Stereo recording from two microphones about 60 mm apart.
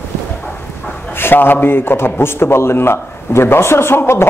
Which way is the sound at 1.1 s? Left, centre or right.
Left.